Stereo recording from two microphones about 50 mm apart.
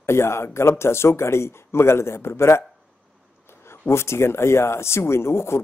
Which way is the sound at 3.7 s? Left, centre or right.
Left.